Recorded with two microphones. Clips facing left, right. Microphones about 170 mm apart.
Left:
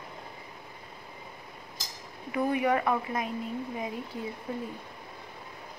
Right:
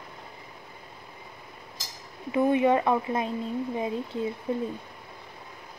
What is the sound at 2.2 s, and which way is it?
Speech, 25° right (ahead or behind).